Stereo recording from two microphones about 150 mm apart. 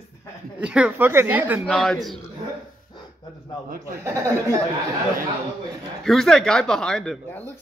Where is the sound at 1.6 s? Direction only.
5° left (ahead or behind).